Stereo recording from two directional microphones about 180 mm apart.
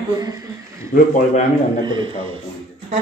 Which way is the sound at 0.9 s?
45° left (ahead or behind).